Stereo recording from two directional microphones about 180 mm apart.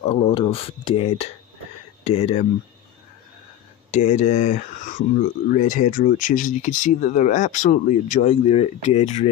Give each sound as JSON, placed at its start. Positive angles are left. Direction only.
{"t": 0.0, "sound": "speech", "side_deg": 30}
{"t": 3.9, "sound": "speech", "side_deg": 45}